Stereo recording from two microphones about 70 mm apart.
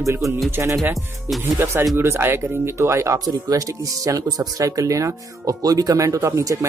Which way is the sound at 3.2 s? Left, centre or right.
Right.